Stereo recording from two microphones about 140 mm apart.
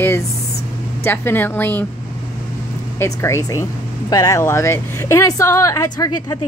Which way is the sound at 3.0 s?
20° left (ahead or behind).